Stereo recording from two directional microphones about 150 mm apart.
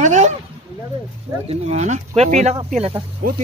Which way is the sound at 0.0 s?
50° right (ahead or behind).